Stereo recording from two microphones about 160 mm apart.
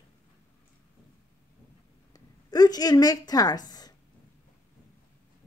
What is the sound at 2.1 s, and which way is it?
A woman's voice, 25° left (ahead or behind).